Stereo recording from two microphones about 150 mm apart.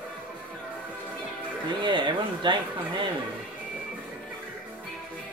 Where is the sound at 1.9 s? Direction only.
30° right (ahead or behind).